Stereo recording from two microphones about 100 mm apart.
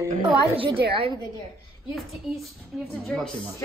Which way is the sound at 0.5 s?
60° right (ahead or behind).